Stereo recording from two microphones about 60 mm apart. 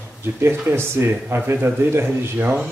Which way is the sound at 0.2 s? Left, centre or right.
Right.